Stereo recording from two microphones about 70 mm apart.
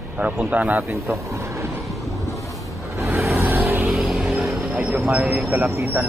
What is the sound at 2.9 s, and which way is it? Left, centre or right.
Vehicle, right.